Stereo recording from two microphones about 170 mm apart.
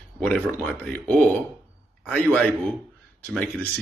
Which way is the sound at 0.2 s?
5° left (ahead or behind).